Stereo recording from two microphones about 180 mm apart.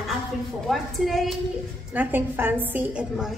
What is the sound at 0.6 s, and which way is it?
A woman's voice, centre (ahead or behind).